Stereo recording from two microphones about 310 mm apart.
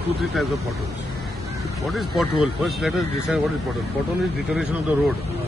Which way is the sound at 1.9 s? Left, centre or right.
Centre.